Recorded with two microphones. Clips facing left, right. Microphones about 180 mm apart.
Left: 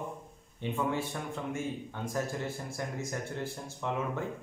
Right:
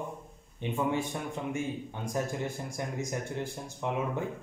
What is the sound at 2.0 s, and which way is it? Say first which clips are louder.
A man's voice: right 1 dB; 15° right (ahead or behind).